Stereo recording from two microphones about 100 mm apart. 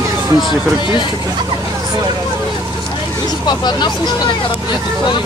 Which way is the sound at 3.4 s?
45° left (ahead or behind).